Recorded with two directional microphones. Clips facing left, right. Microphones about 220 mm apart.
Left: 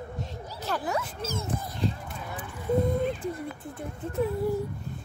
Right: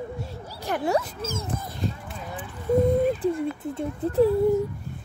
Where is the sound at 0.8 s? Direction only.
30° right (ahead or behind).